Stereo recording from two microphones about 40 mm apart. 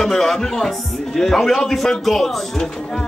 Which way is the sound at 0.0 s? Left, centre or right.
Centre.